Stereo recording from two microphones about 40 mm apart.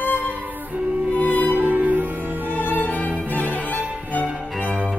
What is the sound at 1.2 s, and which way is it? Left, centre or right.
Music, left.